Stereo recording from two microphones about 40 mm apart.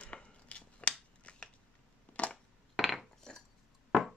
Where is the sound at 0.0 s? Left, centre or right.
Left.